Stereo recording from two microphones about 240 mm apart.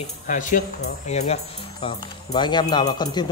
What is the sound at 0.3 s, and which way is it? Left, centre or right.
Speech, left.